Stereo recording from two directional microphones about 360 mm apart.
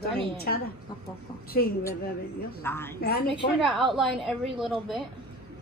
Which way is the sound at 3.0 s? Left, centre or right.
Left.